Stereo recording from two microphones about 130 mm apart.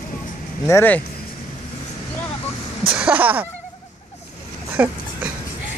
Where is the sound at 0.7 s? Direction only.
15° left (ahead or behind).